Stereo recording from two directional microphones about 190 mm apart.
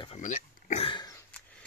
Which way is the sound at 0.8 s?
25° left (ahead or behind).